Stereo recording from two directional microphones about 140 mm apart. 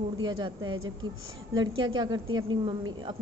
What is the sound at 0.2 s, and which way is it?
A woman's voice, 35° right (ahead or behind).